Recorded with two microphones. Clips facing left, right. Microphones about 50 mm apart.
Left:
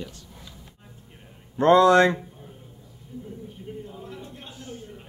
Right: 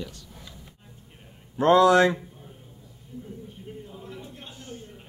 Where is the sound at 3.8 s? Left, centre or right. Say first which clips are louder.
Left 2 dB; centre.